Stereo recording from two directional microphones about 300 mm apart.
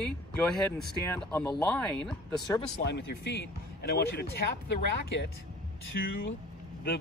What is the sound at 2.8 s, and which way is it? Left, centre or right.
Speech, left.